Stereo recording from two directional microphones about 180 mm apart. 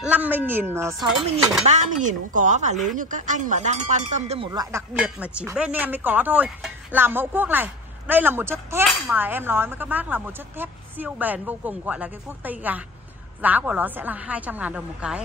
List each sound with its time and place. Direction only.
0.0 s speech: 10° right (ahead or behind)
1.7 s a woman's voice: 45° right (ahead or behind)
4.5 s speech: 15° right (ahead or behind)